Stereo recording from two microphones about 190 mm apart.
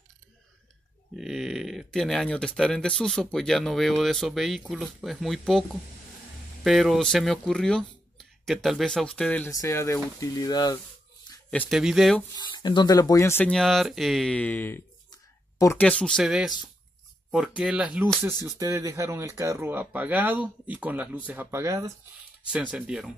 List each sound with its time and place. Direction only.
1.1 s speech: centre (ahead or behind); by 10.8 s 20° left (ahead or behind)
11.3 s a sound: 20° left (ahead or behind)
11.7 s speech: centre (ahead or behind)
12.4 s speech: 20° left (ahead or behind); by 23.1 s centre (ahead or behind)